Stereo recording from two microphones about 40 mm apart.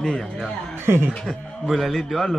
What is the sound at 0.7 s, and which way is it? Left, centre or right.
Speech, right.